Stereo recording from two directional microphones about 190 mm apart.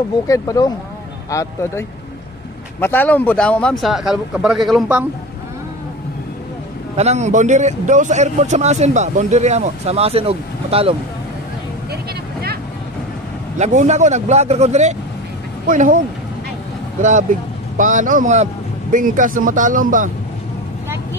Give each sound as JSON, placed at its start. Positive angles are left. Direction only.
{"t": 0.3, "sound": "speech", "side_deg": 20}
{"t": 7.0, "sound": "speech", "side_deg": -35}
{"t": 13.6, "sound": "speech", "side_deg": -40}
{"t": 17.7, "sound": "speech", "side_deg": -45}